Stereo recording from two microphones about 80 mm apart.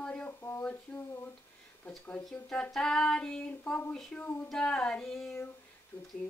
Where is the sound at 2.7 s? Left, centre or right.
Centre.